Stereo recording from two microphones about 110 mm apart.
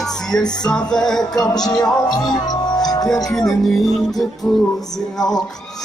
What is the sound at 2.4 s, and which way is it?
Music, 35° left (ahead or behind).